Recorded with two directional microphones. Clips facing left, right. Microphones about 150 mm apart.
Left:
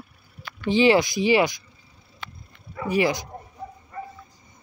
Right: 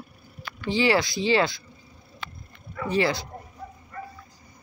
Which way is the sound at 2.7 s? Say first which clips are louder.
Left 2 dB; 15° left (ahead or behind).